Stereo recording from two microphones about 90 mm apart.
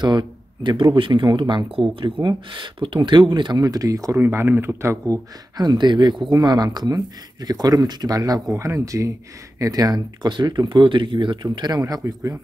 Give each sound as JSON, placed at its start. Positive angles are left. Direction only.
{"t": 0.0, "sound": "speech", "side_deg": -55}
{"t": 3.6, "sound": "speech", "side_deg": -40}
{"t": 4.2, "sound": "speech", "side_deg": -25}
{"t": 5.1, "sound": "speech", "side_deg": -50}
{"t": 11.4, "sound": "speech", "side_deg": -50}